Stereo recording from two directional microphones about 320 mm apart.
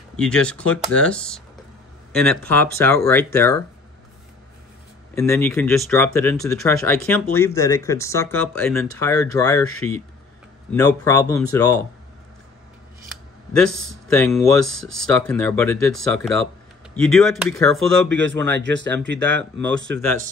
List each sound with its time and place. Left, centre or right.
0.1 s speech: centre
5.1 s speech: centre
13.5 s speech: centre
18.5 s speech: right
19.1 s speech: centre
19.6 s speech: right